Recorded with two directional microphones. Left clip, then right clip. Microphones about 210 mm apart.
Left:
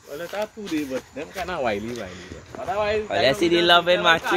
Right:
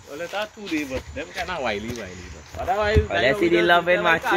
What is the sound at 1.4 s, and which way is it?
Speech, 50° left (ahead or behind).